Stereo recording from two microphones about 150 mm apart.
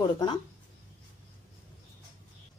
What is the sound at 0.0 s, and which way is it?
Speech, 30° left (ahead or behind).